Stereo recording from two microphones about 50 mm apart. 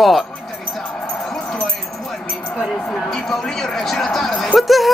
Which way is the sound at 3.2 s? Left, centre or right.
Centre.